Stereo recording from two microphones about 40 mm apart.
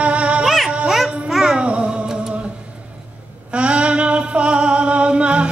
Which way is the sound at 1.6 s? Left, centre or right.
Right.